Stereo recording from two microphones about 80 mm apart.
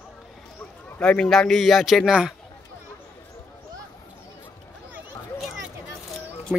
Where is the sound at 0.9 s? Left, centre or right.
Centre.